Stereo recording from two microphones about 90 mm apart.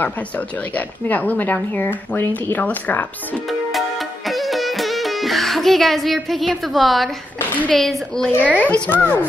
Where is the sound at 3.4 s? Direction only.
Centre (ahead or behind).